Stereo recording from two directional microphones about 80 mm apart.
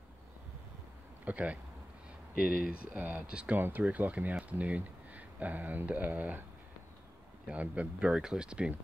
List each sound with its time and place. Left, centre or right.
1.2 s speech: centre
7.4 s speech: centre